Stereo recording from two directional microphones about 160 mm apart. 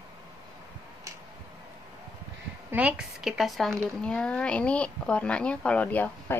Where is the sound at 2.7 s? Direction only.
10° right (ahead or behind).